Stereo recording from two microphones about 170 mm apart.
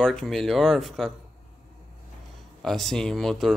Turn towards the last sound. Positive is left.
turn(degrees=0)  # may be behind; listen again after turning